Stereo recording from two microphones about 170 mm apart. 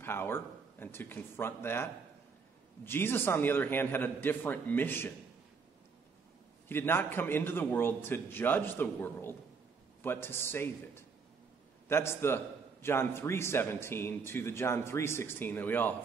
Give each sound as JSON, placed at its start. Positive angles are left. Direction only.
{"t": 0.0, "sound": "speech", "side_deg": 15}
{"t": 6.7, "sound": "speech", "side_deg": 15}